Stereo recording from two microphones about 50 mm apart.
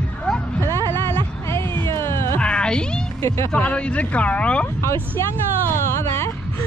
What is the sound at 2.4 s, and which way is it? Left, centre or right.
Cat, centre.